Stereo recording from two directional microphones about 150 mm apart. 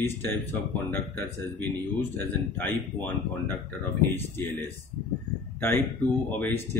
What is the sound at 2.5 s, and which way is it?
Speech, 10° left (ahead or behind).